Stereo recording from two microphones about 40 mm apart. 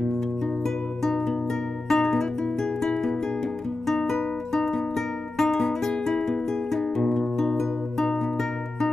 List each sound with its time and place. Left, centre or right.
1.0 s music: centre